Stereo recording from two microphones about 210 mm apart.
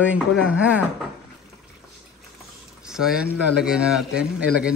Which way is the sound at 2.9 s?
5° right (ahead or behind).